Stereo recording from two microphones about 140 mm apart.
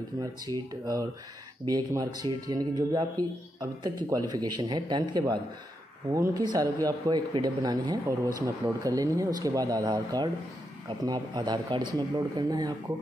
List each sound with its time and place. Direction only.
0.2 s a man's voice: 25° right (ahead or behind)